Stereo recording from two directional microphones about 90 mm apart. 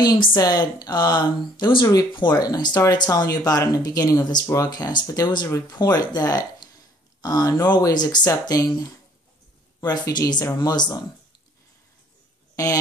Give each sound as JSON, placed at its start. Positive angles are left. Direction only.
{"t": 0.0, "sound": "speech", "side_deg": 50}
{"t": 1.6, "sound": "speech", "side_deg": 65}
{"t": 2.1, "sound": "speech", "side_deg": 50}
{"t": 9.8, "sound": "speech", "side_deg": 50}